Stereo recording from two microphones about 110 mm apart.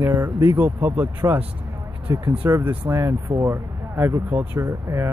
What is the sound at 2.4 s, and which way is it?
Speech, 25° right (ahead or behind).